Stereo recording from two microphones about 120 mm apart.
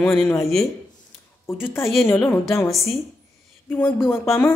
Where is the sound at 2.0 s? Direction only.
20° left (ahead or behind).